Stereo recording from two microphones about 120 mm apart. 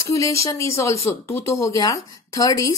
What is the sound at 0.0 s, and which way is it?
Speech, 25° left (ahead or behind).